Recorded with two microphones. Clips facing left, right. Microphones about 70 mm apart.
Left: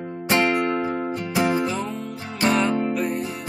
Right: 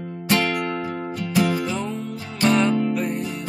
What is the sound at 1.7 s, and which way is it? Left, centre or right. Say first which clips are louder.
Music: even; centre.